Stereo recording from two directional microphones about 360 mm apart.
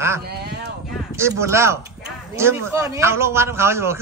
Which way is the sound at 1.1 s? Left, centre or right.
Centre.